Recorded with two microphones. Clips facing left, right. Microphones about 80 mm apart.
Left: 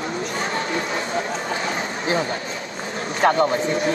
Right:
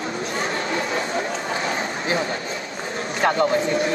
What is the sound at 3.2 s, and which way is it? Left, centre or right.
Speech, left.